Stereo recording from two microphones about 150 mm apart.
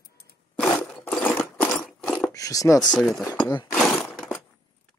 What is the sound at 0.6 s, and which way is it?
Sewing machine, 10° left (ahead or behind).